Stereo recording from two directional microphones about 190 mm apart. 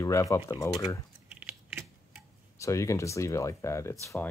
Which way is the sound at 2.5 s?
15° left (ahead or behind).